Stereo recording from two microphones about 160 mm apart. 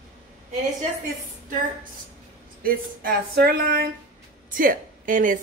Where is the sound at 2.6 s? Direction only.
70° right (ahead or behind).